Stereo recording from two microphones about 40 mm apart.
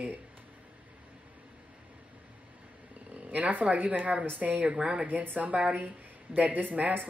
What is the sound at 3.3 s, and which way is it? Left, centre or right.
Speech, right.